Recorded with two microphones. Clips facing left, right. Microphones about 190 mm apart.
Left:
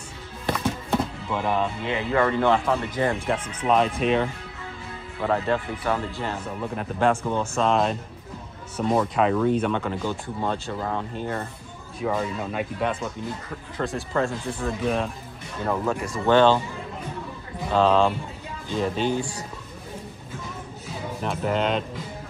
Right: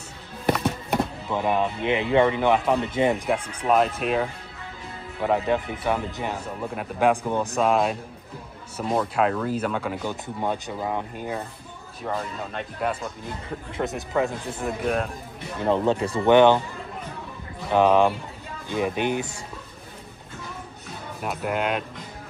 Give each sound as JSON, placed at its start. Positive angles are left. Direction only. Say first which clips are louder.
{"t": 0.5, "sound": "speech", "louder": "right 1 dB", "side_deg": -15}
{"t": 3.6, "sound": "speech", "louder": "left 1 dB", "side_deg": -5}
{"t": 13.7, "sound": "speech", "louder": "even", "side_deg": -15}
{"t": 14.7, "sound": "speech", "louder": "even", "side_deg": -5}
{"t": 15.6, "sound": "speech", "louder": "right 4 dB", "side_deg": -25}
{"t": 16.3, "sound": "speech", "louder": "right 2 dB", "side_deg": -15}
{"t": 17.7, "sound": "speech", "louder": "right 1 dB", "side_deg": -15}
{"t": 21.2, "sound": "speech", "louder": "left 2 dB", "side_deg": -5}